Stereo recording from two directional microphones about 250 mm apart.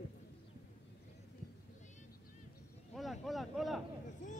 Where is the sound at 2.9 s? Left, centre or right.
Centre.